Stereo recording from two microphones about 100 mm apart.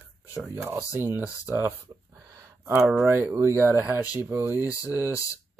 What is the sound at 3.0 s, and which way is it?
Speech, 20° right (ahead or behind).